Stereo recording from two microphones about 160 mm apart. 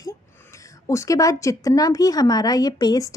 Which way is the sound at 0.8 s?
20° left (ahead or behind).